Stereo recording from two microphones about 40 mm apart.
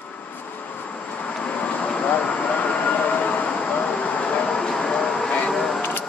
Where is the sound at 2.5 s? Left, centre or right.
Left.